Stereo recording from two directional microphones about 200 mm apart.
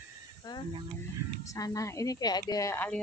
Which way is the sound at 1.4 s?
15° left (ahead or behind).